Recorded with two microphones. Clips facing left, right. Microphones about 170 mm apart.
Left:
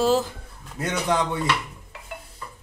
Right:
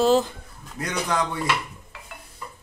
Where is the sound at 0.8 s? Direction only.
25° left (ahead or behind).